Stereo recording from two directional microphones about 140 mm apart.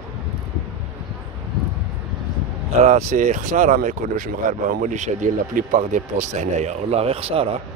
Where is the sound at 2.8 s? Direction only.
60° right (ahead or behind); by 7.5 s 45° right (ahead or behind).